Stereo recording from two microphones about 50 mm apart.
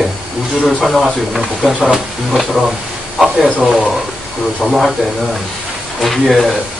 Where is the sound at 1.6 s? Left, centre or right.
Centre.